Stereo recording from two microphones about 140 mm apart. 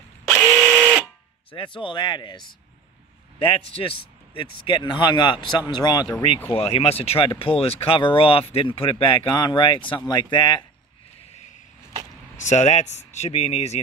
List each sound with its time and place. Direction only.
0.5 s a sound: centre (ahead or behind)
1.5 s speech: 35° left (ahead or behind)
6.5 s speech: 45° left (ahead or behind)
12.4 s speech: 55° left (ahead or behind)